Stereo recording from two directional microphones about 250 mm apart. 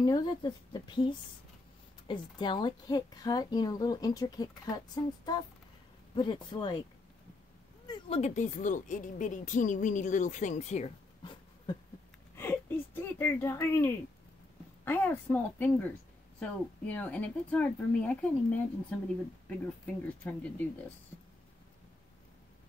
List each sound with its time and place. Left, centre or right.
0.0 s speech: centre
7.9 s speech: left
12.4 s a sound: centre
14.9 s speech: centre
20.2 s speech: centre